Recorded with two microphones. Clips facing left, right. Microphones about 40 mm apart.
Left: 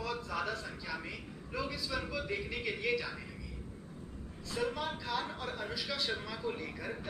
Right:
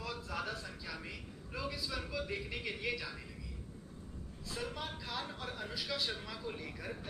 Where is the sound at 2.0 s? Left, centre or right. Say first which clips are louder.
Left 3 dB; centre.